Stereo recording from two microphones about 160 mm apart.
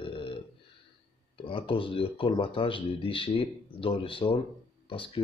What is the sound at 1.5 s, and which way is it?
Speech, 30° left (ahead or behind).